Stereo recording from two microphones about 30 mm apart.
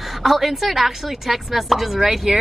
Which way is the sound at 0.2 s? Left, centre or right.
Centre.